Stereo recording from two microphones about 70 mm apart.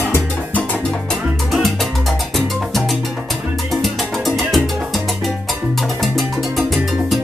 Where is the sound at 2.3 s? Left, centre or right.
Centre.